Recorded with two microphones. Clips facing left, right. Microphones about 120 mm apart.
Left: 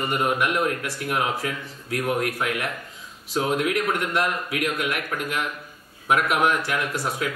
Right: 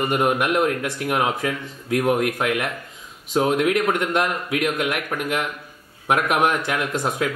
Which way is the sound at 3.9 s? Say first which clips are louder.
Right 3 dB; 20° right (ahead or behind).